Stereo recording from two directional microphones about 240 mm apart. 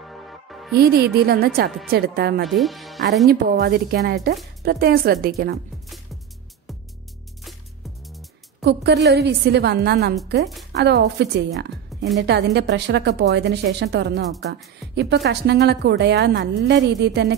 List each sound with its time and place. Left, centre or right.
0.0 s music: centre
0.7 s speech: right
2.4 s speech: centre
3.3 s speech: right
8.6 s a woman's voice: right